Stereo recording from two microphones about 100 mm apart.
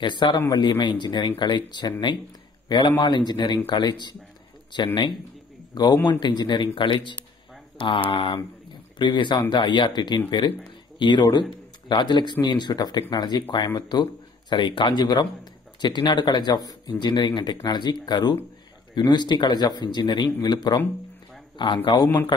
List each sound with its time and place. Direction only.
0.0 s speech: 50° left (ahead or behind)
8.9 s speech: 50° left (ahead or behind)